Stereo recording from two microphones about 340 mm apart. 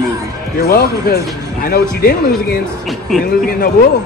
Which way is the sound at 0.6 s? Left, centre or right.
Left.